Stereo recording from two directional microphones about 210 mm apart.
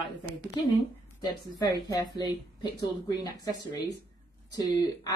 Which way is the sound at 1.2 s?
20° left (ahead or behind).